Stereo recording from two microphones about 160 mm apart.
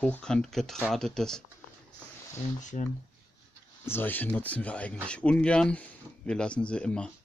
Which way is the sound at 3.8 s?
15° left (ahead or behind).